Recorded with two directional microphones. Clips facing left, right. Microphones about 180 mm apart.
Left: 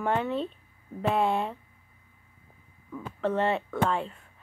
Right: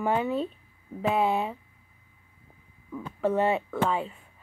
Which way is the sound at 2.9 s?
10° right (ahead or behind).